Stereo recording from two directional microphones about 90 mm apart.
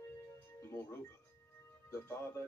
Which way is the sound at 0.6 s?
30° left (ahead or behind).